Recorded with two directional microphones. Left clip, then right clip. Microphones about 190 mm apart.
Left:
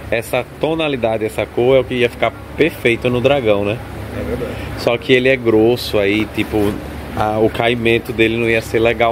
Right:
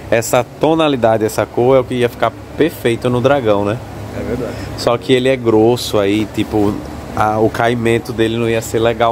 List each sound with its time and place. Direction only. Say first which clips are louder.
0.1 s speech: right 5 dB; 25° right (ahead or behind); by 3.7 s 10° right (ahead or behind)
4.8 s speech: even; 10° right (ahead or behind)
7.7 s speech: even; 40° right (ahead or behind)
8.3 s speech: left 1 dB; 5° right (ahead or behind)